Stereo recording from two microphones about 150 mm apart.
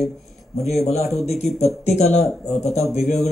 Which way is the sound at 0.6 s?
Centre (ahead or behind).